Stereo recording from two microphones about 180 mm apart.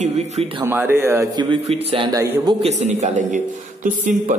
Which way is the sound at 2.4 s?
35° right (ahead or behind).